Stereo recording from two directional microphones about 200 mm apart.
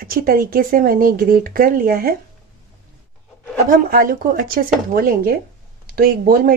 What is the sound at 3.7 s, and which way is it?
Speech, 45° right (ahead or behind).